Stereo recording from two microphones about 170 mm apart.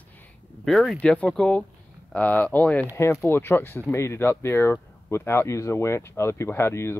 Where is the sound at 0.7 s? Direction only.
Centre (ahead or behind).